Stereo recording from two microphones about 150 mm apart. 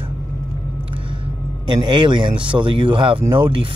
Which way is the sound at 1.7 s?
30° right (ahead or behind).